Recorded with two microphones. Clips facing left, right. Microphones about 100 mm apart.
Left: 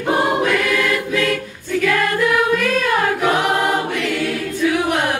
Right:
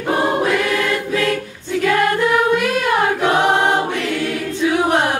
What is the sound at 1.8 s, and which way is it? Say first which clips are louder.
Music: right 2 dB; 30° right (ahead or behind).